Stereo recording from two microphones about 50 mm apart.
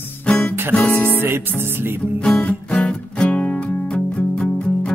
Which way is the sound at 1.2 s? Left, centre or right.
Right.